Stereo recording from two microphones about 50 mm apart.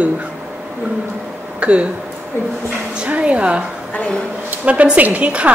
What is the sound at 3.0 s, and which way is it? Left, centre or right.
Speech, right.